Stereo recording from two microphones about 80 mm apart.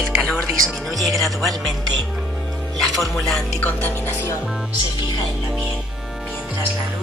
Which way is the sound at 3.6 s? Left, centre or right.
Left.